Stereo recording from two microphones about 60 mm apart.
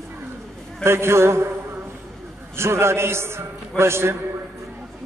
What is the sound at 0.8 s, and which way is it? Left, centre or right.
Speech, right.